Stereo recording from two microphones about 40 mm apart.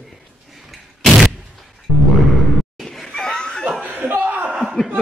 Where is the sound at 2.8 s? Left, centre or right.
Centre.